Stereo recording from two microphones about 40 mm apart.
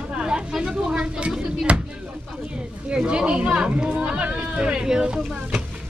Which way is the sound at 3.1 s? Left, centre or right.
Right.